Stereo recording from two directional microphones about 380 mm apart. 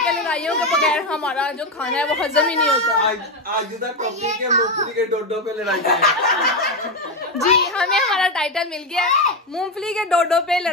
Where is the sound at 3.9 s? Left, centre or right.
Centre.